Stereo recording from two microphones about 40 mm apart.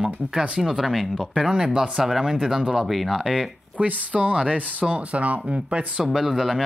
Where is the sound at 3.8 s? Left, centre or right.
Right.